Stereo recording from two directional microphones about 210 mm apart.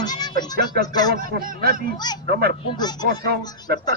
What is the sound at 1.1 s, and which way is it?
Speech, 45° right (ahead or behind).